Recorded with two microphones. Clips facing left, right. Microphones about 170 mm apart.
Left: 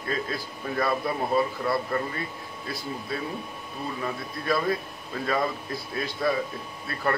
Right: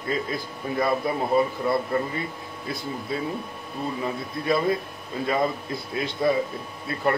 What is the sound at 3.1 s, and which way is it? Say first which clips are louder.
A man's voice: right 4 dB; 20° right (ahead or behind).